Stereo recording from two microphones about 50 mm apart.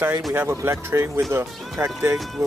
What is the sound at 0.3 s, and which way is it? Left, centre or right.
Speech, right.